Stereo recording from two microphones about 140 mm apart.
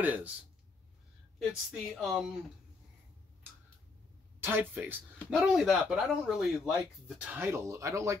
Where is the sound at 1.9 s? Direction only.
Centre (ahead or behind).